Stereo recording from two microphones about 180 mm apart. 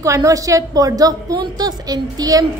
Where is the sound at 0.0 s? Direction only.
15° right (ahead or behind).